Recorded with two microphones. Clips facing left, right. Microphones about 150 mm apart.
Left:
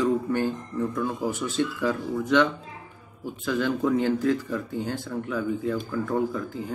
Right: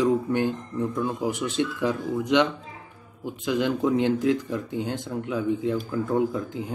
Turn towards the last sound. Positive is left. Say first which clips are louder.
# right 2 dB
turn(degrees=-20)  # may be behind; listen again after turning